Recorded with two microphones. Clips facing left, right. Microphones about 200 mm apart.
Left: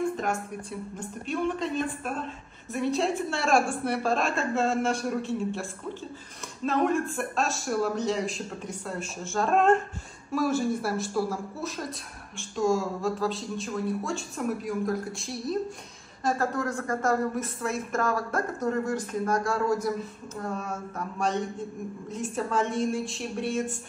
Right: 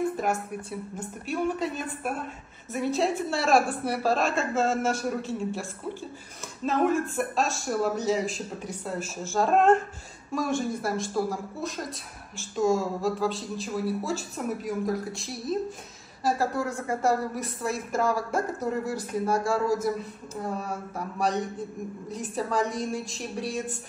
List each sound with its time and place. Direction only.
0.2 s speech: 5° right (ahead or behind)
21.2 s a man's voice: 40° right (ahead or behind)
22.1 s speech: centre (ahead or behind)
22.6 s a man's voice: 40° right (ahead or behind)
22.8 s speech: centre (ahead or behind)